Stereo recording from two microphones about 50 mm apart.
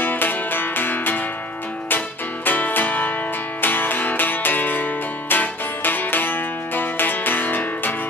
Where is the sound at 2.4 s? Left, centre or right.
Left.